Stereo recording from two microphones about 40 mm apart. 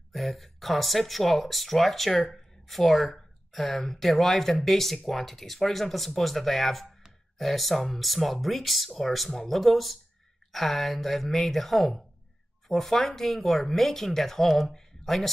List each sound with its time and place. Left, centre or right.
0.1 s speech: centre